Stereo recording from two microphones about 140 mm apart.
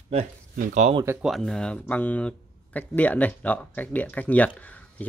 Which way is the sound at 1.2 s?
Centre (ahead or behind).